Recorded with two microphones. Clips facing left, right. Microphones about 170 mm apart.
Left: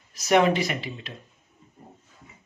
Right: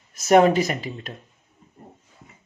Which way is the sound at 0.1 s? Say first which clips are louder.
Right 4 dB; 45° right (ahead or behind).